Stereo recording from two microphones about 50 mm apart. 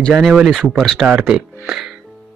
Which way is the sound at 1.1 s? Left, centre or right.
Centre.